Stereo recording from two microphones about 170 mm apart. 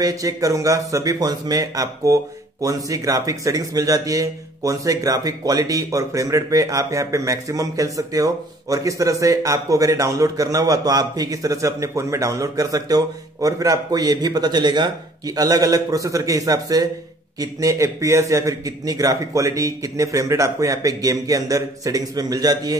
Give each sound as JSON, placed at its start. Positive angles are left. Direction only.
{"t": 0.0, "sound": "a man's voice", "side_deg": -20}